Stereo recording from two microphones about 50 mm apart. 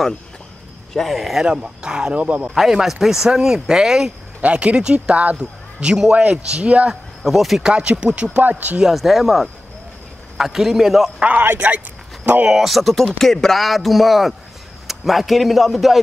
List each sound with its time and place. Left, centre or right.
0.9 s speech: centre
1.4 s speech: centre
2.4 s speech: centre
4.4 s speech: right
5.8 s speech: centre
6.6 s speech: right
7.2 s speech: centre
7.6 s speech: centre
8.8 s speech: centre
11.3 s speech: right
12.4 s speech: centre